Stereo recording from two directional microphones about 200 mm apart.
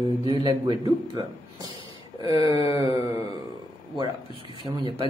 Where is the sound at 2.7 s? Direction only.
15° right (ahead or behind).